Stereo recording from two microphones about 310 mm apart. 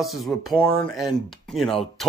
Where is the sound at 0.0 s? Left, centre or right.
Centre.